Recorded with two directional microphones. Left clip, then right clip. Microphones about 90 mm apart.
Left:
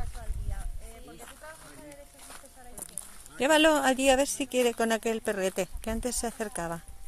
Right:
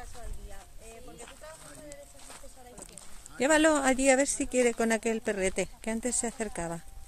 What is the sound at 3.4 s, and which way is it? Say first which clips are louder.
Speech: left 2 dB; 15° right (ahead or behind).